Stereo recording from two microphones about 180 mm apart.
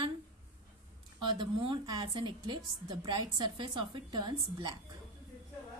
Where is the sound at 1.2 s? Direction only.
25° right (ahead or behind).